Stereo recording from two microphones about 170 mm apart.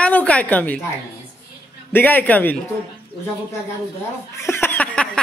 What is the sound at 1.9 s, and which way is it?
Speech, 10° left (ahead or behind).